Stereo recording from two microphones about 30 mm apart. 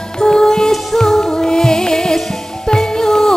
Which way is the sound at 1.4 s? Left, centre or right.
Left.